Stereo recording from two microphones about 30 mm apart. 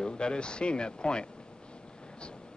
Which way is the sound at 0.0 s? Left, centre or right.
Left.